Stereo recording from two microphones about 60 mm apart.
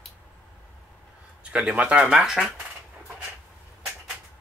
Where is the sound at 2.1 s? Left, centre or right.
Centre.